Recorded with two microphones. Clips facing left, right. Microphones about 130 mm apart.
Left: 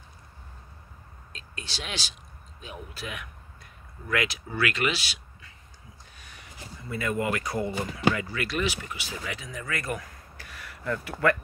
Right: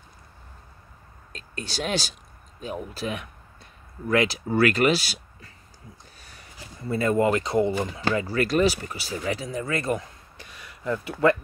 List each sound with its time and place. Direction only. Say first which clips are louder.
1.3 s speech: right 7 dB; 45° right (ahead or behind); by 8.0 s 25° right (ahead or behind)
8.1 s speech: right 9 dB; 35° right (ahead or behind)